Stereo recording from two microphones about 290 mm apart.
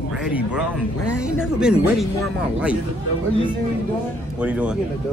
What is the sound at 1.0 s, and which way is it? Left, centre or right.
Speech, left.